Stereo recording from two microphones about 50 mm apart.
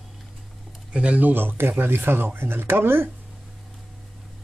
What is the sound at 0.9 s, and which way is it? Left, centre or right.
Speech, right.